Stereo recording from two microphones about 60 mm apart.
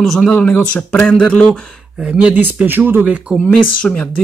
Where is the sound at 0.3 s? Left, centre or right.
Left.